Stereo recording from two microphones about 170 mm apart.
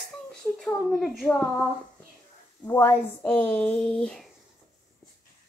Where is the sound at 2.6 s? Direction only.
10° left (ahead or behind).